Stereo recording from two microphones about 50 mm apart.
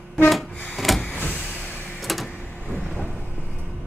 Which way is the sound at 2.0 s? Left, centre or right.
Centre.